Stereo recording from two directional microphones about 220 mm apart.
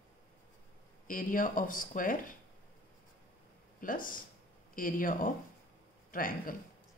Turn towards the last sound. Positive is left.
turn(degrees=40)  # may be behind; listen again after turning